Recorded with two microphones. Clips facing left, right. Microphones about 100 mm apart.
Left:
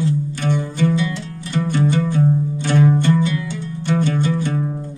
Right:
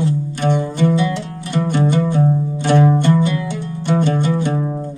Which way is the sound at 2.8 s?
40° right (ahead or behind).